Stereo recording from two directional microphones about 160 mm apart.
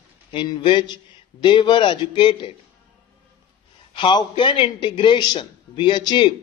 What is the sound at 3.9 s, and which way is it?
A man's voice, 30° left (ahead or behind).